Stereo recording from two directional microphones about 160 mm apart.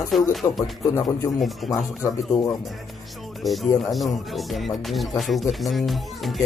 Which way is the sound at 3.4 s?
Centre (ahead or behind).